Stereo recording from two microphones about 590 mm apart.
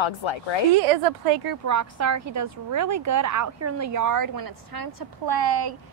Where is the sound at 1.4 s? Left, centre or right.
Right.